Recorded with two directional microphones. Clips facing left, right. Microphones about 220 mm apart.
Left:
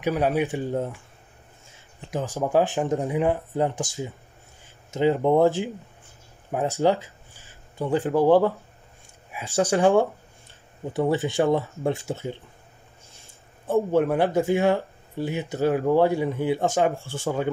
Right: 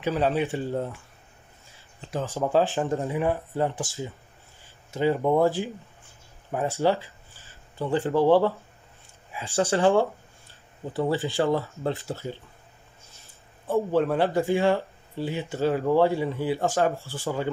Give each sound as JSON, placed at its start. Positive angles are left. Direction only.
{"t": 0.0, "sound": "speech", "side_deg": 15}
{"t": 2.0, "sound": "speech", "side_deg": 15}
{"t": 13.7, "sound": "speech", "side_deg": 15}